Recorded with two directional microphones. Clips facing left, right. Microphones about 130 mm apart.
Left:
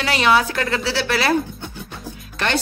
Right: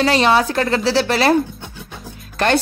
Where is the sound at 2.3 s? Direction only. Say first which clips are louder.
Right 6 dB; 40° right (ahead or behind).